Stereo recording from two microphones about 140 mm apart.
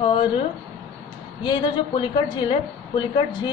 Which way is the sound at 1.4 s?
35° left (ahead or behind).